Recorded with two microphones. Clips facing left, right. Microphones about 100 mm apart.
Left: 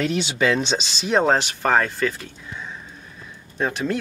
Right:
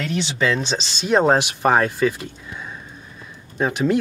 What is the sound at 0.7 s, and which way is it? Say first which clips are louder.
Speech: right 2 dB; 5° right (ahead or behind).